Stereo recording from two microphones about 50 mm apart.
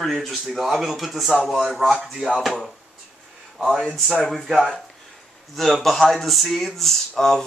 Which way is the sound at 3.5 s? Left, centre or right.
Centre.